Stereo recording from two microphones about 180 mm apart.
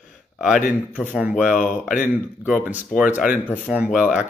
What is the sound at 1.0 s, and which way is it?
Speech, 10° right (ahead or behind).